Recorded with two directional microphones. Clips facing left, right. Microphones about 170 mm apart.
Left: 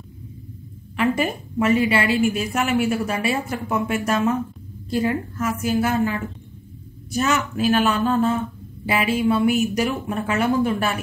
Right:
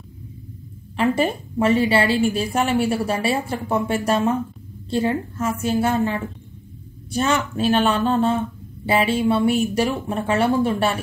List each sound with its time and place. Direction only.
0.9 s a woman's voice: 30° right (ahead or behind)